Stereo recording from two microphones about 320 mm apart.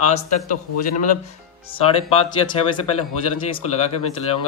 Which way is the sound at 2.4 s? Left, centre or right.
Centre.